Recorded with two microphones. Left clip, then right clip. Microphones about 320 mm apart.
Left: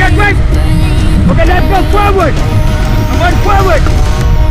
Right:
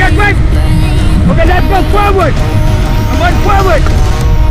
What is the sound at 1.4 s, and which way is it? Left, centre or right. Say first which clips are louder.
Speech: even; centre.